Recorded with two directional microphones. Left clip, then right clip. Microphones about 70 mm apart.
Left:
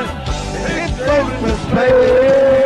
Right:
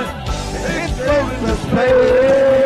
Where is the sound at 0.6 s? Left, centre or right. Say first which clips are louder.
Left 1 dB; left.